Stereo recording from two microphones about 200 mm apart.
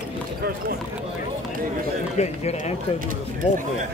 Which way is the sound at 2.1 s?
35° left (ahead or behind).